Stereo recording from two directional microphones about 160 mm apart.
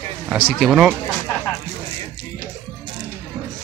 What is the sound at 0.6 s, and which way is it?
Speech, 5° right (ahead or behind).